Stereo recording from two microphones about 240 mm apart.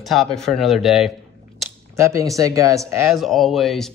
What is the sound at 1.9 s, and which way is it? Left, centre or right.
Speech, centre.